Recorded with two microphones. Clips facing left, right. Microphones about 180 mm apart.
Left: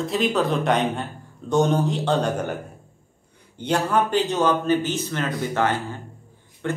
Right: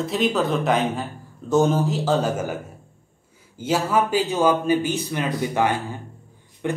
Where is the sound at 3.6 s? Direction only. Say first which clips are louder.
Even; 5° right (ahead or behind).